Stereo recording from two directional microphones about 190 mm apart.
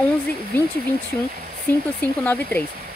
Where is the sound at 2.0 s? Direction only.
10° left (ahead or behind).